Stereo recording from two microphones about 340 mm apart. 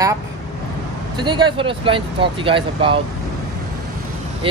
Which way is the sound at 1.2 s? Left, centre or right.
Centre.